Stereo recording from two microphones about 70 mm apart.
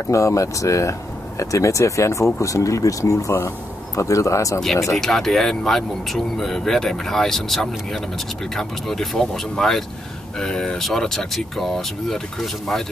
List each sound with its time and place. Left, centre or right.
0.0 s speech: left
4.9 s speech: centre